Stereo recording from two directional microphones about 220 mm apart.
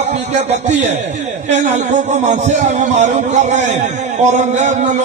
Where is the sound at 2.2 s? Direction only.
30° right (ahead or behind).